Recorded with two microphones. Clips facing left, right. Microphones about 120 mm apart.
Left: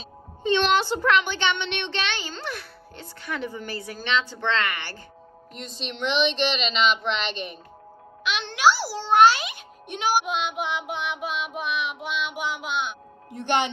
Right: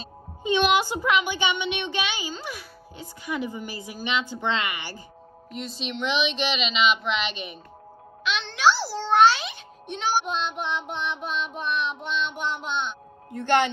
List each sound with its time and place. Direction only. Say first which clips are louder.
0.0 s a child's voice: left 3 dB; 10° right (ahead or behind); by 13.4 s 5° left (ahead or behind)
13.4 s speech: right 3 dB; 15° left (ahead or behind)